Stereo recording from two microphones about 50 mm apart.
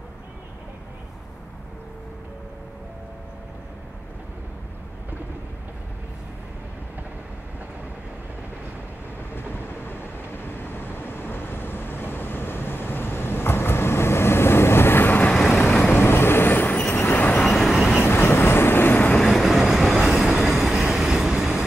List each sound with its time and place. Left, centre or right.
9.3 s vehicle: left
15.3 s vehicle: centre
15.9 s vehicle: left
17.1 s train: left
17.4 s train: centre
18.0 s train: left
19.1 s train: centre